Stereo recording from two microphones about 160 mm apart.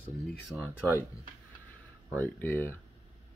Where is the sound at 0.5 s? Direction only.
15° right (ahead or behind).